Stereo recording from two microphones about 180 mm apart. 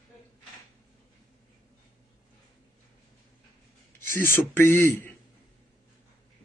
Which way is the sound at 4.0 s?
10° left (ahead or behind).